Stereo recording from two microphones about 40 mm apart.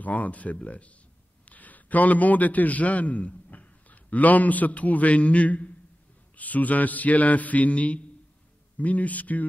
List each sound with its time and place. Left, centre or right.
0.0 s a man's voice: left